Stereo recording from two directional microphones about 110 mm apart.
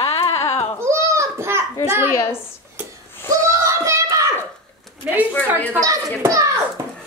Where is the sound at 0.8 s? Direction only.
25° right (ahead or behind).